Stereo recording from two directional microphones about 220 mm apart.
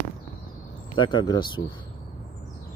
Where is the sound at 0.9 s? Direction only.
20° left (ahead or behind).